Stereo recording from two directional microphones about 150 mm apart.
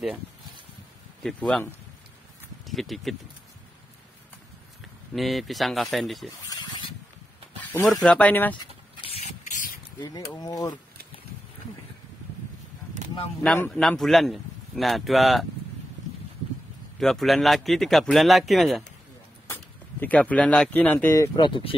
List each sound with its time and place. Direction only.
1.2 s speech: 5° left (ahead or behind)
5.1 s speech: centre (ahead or behind)
6.5 s a sound: 30° left (ahead or behind)
7.6 s a sound: 10° left (ahead or behind)
7.9 s speech: 5° left (ahead or behind)
9.4 s a sound: 60° left (ahead or behind)
9.9 s speech: 25° left (ahead or behind)
13.7 s speech: centre (ahead or behind)
17.0 s speech: centre (ahead or behind)
19.5 s speech: 10° left (ahead or behind); by 21.7 s 35° left (ahead or behind)